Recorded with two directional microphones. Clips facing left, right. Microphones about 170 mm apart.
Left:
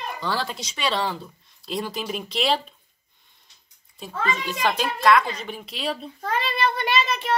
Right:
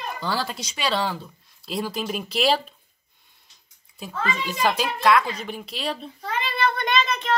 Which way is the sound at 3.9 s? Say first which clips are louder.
Left 1 dB; 5° right (ahead or behind).